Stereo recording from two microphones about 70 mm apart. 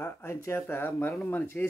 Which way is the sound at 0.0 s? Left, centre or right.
Left.